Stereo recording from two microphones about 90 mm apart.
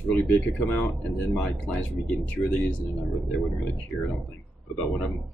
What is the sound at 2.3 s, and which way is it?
Speech, 20° left (ahead or behind).